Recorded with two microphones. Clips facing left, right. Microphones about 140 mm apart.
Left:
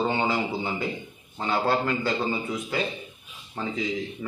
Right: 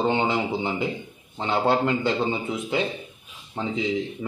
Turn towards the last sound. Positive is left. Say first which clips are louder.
# right 3 dB
turn(degrees=-25)  # may be behind; listen again after turning